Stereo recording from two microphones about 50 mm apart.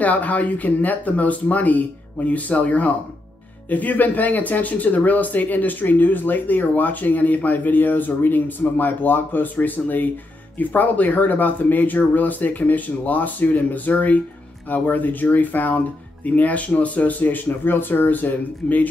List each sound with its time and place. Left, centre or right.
0.0 s speech: left